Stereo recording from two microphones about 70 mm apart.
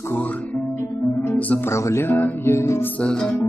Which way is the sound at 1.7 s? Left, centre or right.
Left.